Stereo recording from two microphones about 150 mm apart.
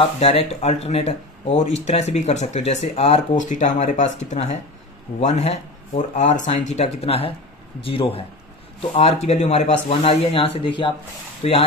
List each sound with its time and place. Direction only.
0.2 s speech: 40° left (ahead or behind)